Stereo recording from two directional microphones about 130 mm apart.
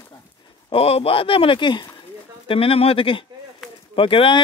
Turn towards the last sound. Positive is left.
turn(degrees=40)  # may be behind; listen again after turning